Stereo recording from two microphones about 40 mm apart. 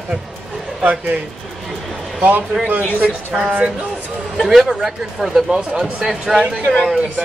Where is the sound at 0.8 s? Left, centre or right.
Right.